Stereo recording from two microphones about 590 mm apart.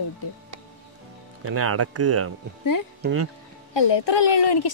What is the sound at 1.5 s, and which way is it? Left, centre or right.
Speech, right.